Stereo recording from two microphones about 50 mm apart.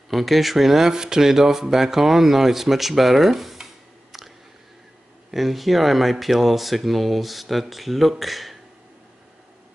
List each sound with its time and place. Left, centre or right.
0.1 s speech: centre
5.3 s speech: centre